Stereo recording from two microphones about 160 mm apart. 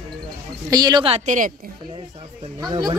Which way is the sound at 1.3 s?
55° right (ahead or behind).